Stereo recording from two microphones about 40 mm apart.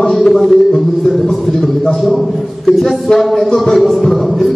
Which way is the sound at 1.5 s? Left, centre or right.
Centre.